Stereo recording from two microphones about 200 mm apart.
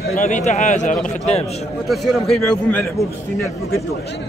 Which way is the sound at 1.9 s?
Centre (ahead or behind).